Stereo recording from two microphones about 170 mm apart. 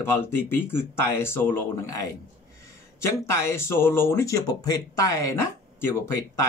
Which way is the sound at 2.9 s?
15° left (ahead or behind).